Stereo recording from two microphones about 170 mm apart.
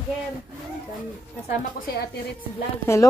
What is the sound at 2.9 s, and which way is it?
Speech, 15° left (ahead or behind).